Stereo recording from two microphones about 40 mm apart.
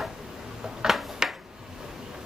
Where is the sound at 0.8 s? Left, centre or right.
Centre.